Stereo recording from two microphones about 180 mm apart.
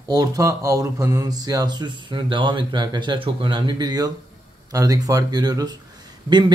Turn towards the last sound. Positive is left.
turn(degrees=-25)  # may be behind; listen again after turning